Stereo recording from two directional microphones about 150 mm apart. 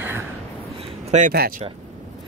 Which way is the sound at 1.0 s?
55° right (ahead or behind).